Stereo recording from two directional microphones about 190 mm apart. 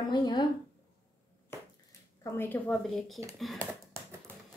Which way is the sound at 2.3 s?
10° left (ahead or behind).